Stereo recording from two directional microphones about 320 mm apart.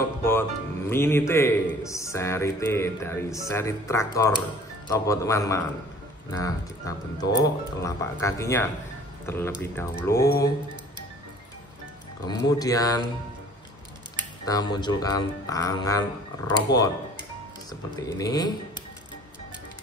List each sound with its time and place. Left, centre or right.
0.2 s a man's voice: centre
12.3 s a man's voice: centre
14.4 s a man's voice: centre
16.7 s speech: left
18.0 s a man's voice: centre